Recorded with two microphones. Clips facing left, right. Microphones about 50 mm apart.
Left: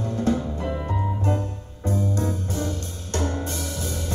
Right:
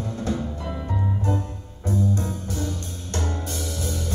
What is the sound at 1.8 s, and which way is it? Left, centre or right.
Music, left.